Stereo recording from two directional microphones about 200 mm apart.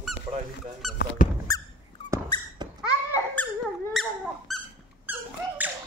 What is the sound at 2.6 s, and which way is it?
Babbling, 20° right (ahead or behind).